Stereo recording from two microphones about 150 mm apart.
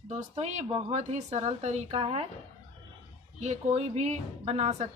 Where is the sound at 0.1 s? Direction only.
50° right (ahead or behind).